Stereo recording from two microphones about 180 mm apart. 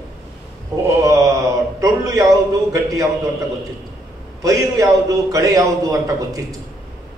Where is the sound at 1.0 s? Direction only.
15° right (ahead or behind).